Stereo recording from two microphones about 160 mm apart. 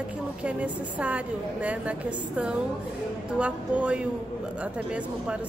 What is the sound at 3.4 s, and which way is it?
Speech, 10° right (ahead or behind).